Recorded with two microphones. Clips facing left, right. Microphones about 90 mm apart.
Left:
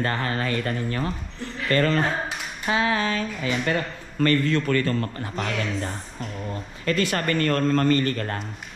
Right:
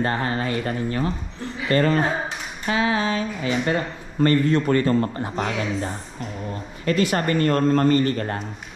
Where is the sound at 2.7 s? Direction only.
40° left (ahead or behind).